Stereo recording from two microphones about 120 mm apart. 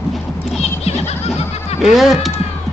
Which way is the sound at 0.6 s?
65° left (ahead or behind).